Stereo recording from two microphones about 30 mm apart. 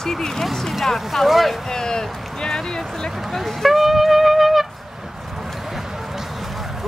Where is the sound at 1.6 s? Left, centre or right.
Left.